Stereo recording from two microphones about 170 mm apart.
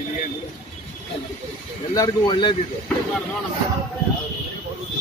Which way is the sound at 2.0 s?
25° left (ahead or behind).